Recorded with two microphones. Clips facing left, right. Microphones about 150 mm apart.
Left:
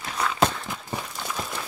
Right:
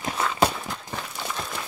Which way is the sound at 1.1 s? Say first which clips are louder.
Even; centre (ahead or behind).